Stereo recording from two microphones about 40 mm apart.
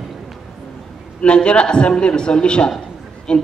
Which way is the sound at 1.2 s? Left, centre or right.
Left.